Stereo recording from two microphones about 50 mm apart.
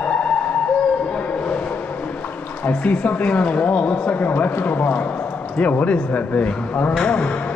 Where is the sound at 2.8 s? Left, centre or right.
Left.